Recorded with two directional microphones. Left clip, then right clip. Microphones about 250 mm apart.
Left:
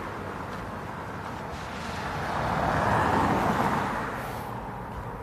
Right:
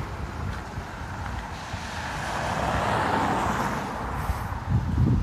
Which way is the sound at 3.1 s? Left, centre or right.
Left.